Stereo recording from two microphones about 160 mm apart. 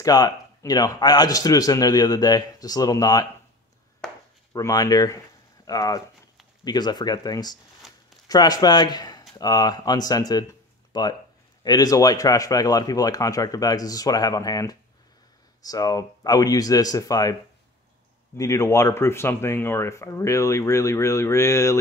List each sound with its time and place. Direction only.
0.0 s a man's voice: 20° left (ahead or behind)
4.0 s chop: 5° left (ahead or behind)
4.6 s a man's voice: 20° left (ahead or behind)
7.8 s a sound: centre (ahead or behind)
8.3 s a man's voice: 25° left (ahead or behind)
18.4 s speech: 20° left (ahead or behind)